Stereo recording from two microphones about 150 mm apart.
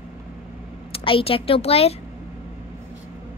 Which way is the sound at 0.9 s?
40° left (ahead or behind).